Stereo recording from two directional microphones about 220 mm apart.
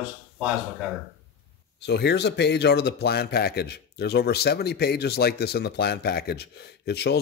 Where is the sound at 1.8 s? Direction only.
50° left (ahead or behind).